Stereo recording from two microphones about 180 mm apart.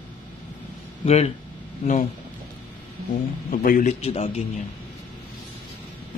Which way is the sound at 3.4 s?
50° left (ahead or behind).